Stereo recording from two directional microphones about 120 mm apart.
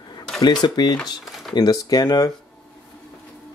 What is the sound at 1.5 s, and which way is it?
Speech, 35° left (ahead or behind).